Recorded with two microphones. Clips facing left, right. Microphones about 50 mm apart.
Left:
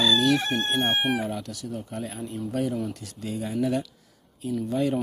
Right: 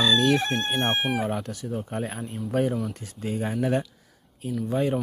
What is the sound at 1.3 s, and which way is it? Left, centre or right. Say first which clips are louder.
Speech: right 3 dB; right.